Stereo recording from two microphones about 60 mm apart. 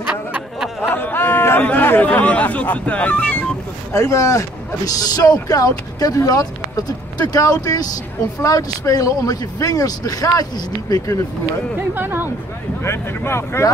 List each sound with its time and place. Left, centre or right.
0.8 s speech: left
3.9 s speech: left
11.9 s speech: right
12.8 s speech: left